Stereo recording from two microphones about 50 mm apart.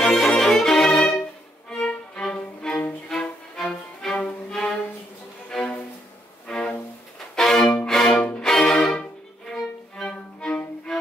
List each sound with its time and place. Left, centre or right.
0.0 s music: centre
4.5 s cello: centre
6.4 s music: centre
7.3 s violin: centre
7.8 s music: centre
9.5 s violin: centre
10.1 s music: left